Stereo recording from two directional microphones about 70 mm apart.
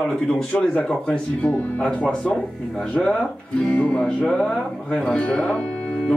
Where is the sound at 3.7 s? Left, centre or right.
Centre.